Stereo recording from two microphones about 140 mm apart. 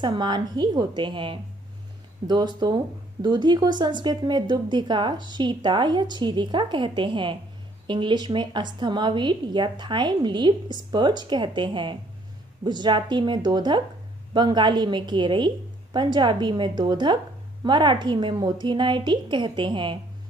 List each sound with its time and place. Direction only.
0.0 s speech: 30° right (ahead or behind)